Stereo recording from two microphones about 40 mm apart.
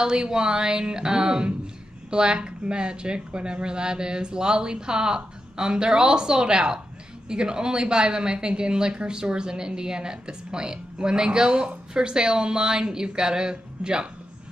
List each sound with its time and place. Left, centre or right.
0.0 s a woman's voice: centre